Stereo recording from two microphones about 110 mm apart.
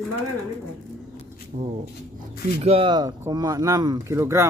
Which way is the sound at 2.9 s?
35° right (ahead or behind).